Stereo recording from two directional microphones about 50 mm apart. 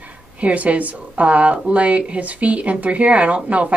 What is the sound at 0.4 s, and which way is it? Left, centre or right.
Speech, right.